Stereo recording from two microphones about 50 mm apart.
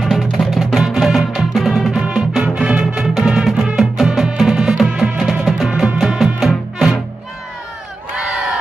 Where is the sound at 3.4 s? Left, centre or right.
Centre.